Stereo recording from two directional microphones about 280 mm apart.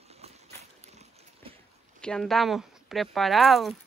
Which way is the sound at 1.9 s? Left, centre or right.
Centre.